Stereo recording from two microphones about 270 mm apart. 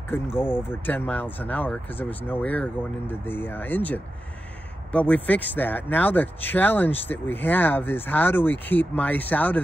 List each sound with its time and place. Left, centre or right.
0.1 s speech: centre